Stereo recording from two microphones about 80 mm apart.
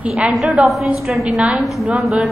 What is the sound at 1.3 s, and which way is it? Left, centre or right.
Speech, centre.